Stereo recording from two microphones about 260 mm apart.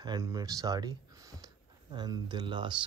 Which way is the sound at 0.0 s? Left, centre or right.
Centre.